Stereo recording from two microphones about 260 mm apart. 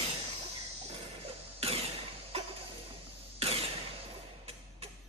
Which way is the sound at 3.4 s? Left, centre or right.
Right.